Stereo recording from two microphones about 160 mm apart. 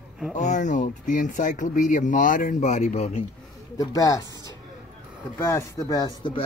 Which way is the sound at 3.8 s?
20° left (ahead or behind).